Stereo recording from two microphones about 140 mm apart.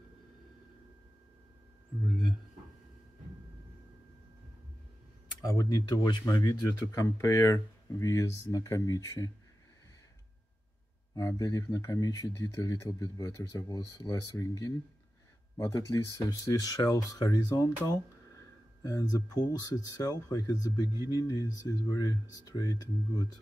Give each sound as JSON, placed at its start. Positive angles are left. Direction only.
{"t": 5.5, "sound": "speech", "side_deg": 25}
{"t": 11.1, "sound": "speech", "side_deg": 25}